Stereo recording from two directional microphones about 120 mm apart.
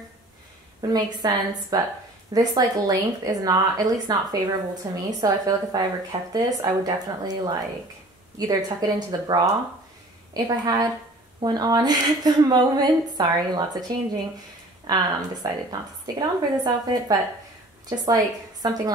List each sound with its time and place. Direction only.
0.7 s a woman's voice: 35° right (ahead or behind)
14.9 s a woman's voice: 35° right (ahead or behind)